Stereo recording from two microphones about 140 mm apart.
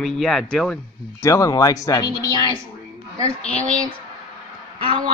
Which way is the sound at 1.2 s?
25° left (ahead or behind).